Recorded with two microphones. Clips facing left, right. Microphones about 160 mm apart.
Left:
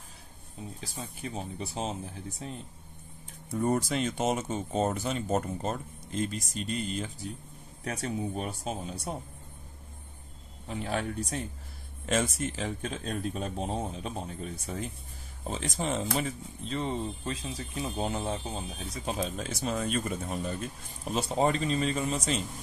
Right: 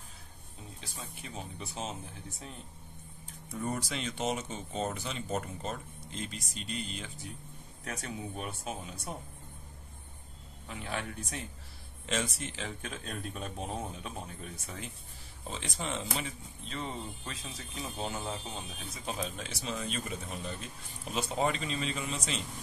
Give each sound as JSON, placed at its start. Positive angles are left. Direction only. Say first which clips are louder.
{"t": 0.9, "sound": "speech", "louder": "left 6 dB", "side_deg": 35}
{"t": 3.5, "sound": "speech", "louder": "left 8 dB", "side_deg": 45}
{"t": 7.8, "sound": "speech", "louder": "left 7 dB", "side_deg": 35}
{"t": 10.7, "sound": "speech", "louder": "left 6 dB", "side_deg": 35}